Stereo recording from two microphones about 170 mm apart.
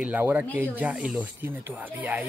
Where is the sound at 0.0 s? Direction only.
10° right (ahead or behind).